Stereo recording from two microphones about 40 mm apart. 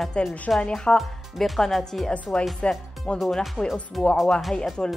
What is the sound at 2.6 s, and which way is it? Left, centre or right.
Speech, left.